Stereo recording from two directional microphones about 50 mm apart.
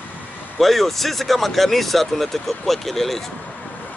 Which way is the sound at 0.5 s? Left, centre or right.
Centre.